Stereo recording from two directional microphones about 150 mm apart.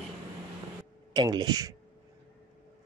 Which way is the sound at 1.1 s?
25° right (ahead or behind).